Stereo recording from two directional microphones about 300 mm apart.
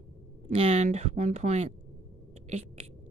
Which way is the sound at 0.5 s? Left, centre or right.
Right.